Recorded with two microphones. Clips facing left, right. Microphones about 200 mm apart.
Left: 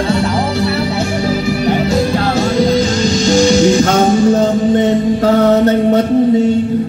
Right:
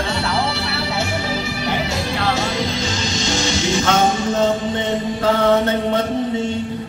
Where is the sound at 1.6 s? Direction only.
40° left (ahead or behind).